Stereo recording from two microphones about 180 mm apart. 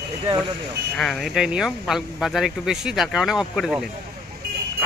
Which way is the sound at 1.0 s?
Centre (ahead or behind).